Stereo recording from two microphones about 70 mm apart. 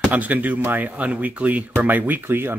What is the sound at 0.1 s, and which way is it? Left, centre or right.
Speech, right.